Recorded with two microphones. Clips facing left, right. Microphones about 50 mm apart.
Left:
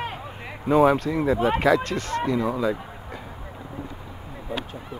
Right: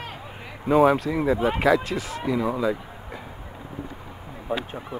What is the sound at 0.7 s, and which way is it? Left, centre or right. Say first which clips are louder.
Speech: even; centre.